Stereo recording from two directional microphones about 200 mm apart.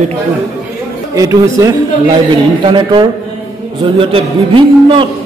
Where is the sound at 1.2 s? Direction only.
15° right (ahead or behind).